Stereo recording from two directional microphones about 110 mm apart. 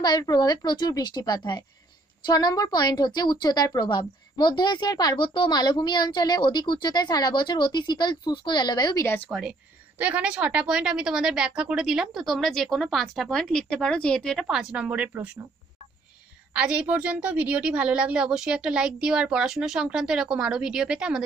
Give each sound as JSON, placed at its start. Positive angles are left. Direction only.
{"t": 0.0, "sound": "a woman's voice", "side_deg": 40}
{"t": 9.3, "sound": "a woman's voice", "side_deg": -5}
{"t": 14.5, "sound": "a woman's voice", "side_deg": -5}
{"t": 16.5, "sound": "a woman's voice", "side_deg": -10}